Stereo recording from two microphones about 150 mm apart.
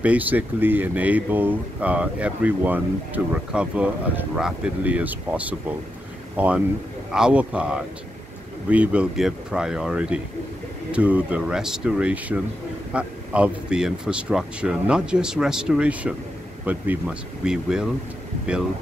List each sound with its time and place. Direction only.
0.0 s speech: 10° right (ahead or behind)